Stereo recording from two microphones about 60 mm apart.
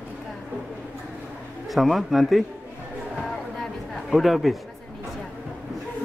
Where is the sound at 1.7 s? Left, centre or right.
Centre.